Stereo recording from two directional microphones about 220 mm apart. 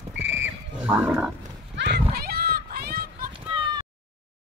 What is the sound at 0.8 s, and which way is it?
Wild animals, 5° right (ahead or behind).